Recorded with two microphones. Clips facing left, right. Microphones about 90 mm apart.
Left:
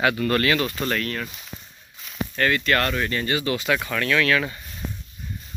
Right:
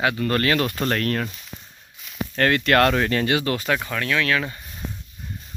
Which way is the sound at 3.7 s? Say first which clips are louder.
Left 1 dB; 20° right (ahead or behind).